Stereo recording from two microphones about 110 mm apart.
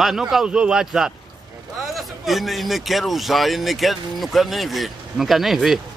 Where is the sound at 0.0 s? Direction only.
5° right (ahead or behind).